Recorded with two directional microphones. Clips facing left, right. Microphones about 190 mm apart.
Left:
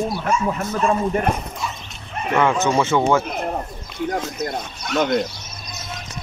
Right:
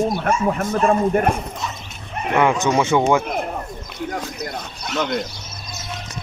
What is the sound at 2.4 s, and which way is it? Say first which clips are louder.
Speech: right 1 dB; 15° right (ahead or behind).